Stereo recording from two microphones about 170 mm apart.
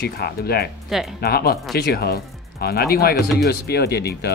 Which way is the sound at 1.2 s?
65° left (ahead or behind).